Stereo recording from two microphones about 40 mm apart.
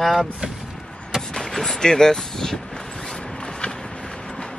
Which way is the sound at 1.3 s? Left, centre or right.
Centre.